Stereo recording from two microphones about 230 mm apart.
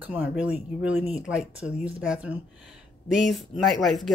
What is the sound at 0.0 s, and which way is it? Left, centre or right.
Speech, centre.